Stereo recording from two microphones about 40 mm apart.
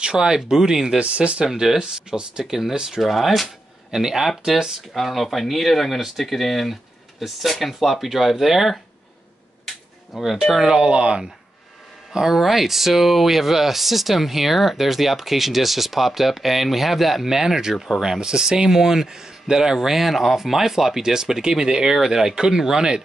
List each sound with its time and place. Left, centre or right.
0.0 s speech: centre
0.9 s speech: right
1.4 s speech: centre
2.4 s speech: centre
3.0 s speech: centre
4.9 s speech: centre
10.1 s speech: centre
10.6 s speech: right
12.1 s speech: centre
17.7 s speech: centre